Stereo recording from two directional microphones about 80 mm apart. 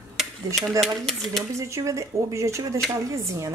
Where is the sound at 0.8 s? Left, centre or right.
Centre.